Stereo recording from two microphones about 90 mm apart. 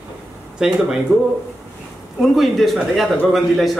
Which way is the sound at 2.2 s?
Centre (ahead or behind).